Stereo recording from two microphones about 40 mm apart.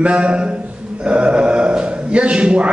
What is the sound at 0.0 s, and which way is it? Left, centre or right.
A man's voice, right.